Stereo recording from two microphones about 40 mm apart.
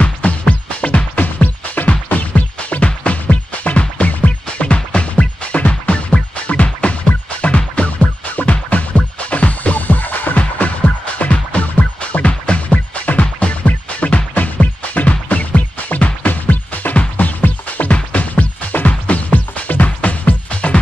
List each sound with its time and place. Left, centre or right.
0.0 s music: left
1.1 s music: left
11.1 s music: left